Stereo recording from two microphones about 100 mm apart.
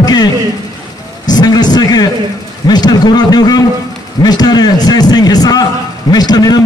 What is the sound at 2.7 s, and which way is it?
A man's voice, 45° left (ahead or behind).